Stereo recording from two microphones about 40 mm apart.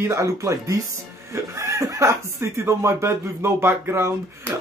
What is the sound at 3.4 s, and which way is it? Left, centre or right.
Speech, right.